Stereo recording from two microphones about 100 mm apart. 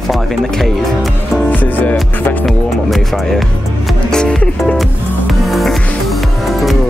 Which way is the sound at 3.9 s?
5° left (ahead or behind).